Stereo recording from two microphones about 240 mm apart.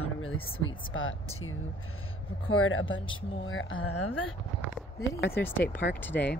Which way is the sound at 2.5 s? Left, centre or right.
Left.